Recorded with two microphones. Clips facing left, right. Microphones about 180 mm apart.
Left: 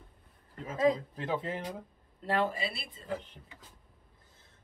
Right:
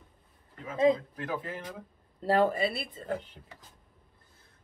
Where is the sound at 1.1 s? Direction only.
25° left (ahead or behind).